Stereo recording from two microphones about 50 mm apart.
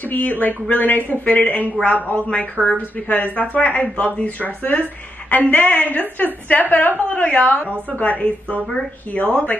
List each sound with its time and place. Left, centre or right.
0.1 s a woman's voice: left
2.6 s a woman's voice: right
3.1 s a woman's voice: left